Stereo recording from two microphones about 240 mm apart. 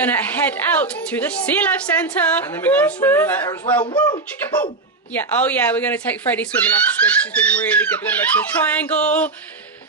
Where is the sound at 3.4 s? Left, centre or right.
Centre.